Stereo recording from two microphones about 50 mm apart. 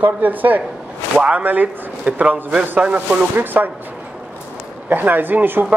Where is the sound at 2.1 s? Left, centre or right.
Right.